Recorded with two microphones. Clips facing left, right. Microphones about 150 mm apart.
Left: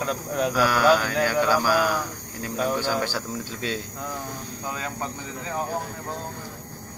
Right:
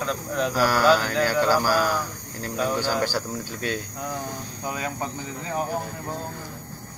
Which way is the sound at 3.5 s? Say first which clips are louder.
Right 1 dB; 25° left (ahead or behind).